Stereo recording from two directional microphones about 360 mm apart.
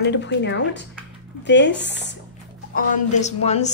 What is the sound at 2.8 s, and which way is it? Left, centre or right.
Speech, centre.